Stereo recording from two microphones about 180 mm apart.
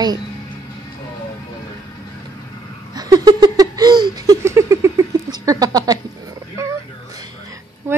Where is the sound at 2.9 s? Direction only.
20° right (ahead or behind).